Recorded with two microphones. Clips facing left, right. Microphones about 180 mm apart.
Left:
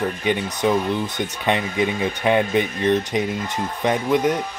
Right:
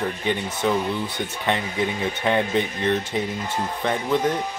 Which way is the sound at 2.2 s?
15° left (ahead or behind).